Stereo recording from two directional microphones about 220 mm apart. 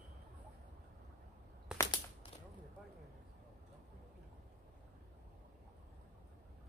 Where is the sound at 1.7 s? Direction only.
20° left (ahead or behind).